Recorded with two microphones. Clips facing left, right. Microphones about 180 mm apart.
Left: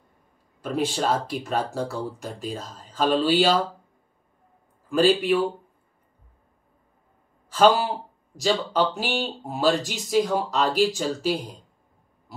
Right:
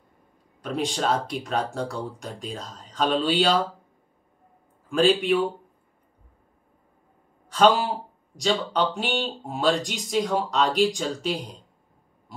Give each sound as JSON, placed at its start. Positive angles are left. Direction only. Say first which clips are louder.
{"t": 0.6, "sound": "speech", "louder": "left 2 dB", "side_deg": 5}
{"t": 4.8, "sound": "a sound", "louder": "left 1 dB", "side_deg": 0}
{"t": 7.4, "sound": "speech", "louder": "left 1 dB", "side_deg": 5}